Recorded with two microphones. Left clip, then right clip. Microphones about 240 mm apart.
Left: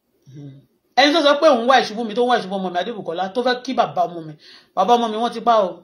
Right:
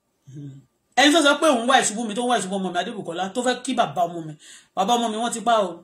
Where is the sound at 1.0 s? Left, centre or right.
Centre.